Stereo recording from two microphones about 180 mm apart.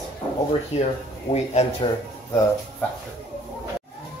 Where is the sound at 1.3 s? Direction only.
35° left (ahead or behind).